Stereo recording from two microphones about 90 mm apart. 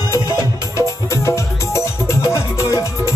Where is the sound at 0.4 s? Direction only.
35° left (ahead or behind).